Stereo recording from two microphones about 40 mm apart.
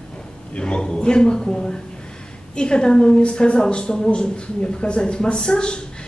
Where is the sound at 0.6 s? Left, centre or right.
Left.